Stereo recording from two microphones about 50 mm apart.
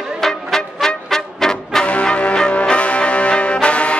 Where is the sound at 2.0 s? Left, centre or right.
Left.